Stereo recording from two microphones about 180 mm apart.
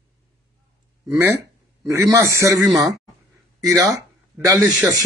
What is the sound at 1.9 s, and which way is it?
Speech, 15° right (ahead or behind).